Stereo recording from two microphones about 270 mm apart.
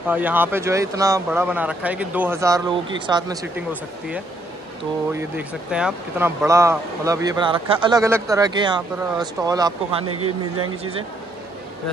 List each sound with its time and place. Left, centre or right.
0.1 s speech: centre
5.1 s speech: centre
10.0 s speech: right